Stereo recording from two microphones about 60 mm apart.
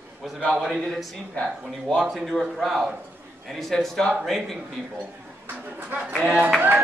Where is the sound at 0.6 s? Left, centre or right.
Centre.